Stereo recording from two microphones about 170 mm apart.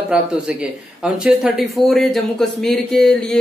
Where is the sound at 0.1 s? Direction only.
5° right (ahead or behind).